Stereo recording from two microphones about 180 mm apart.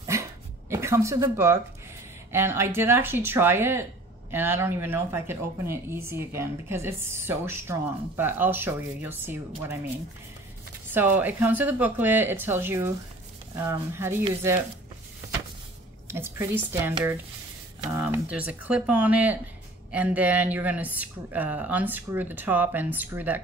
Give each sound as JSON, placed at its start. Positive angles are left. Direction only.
{"t": 0.0, "sound": "dog", "side_deg": -15}
{"t": 2.3, "sound": "speech", "side_deg": -15}
{"t": 10.9, "sound": "speech", "side_deg": -10}
{"t": 16.1, "sound": "speech", "side_deg": -15}